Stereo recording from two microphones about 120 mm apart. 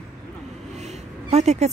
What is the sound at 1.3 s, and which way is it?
Speech, 70° right (ahead or behind).